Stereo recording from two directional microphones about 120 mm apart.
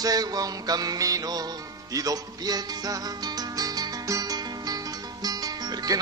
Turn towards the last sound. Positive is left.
turn(degrees=-35)  # may be behind; listen again after turning